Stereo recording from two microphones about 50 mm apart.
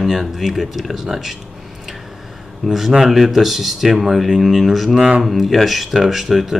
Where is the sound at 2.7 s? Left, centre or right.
Centre.